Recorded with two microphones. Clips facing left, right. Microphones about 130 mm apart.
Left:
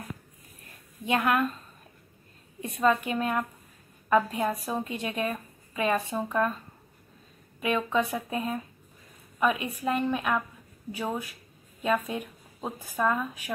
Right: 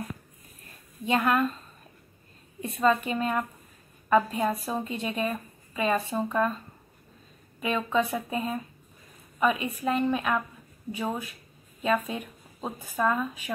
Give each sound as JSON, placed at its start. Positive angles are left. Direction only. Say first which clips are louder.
{"t": 1.0, "sound": "speech", "louder": "right 1 dB", "side_deg": 5}
{"t": 2.6, "sound": "speech", "louder": "right 1 dB", "side_deg": 0}
{"t": 7.6, "sound": "speech", "louder": "even", "side_deg": 5}